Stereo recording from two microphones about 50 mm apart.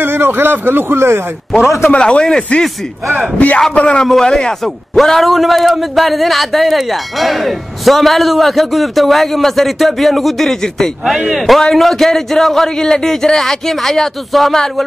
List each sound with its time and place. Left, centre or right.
0.0 s speech: right
1.9 s speech: left
3.3 s speech: left
4.9 s speech: centre